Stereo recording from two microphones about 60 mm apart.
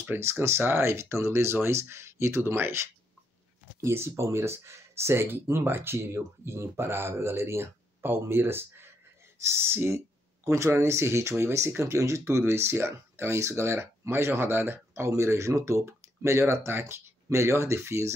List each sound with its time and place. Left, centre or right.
0.2 s speech: right
15.0 s speech: right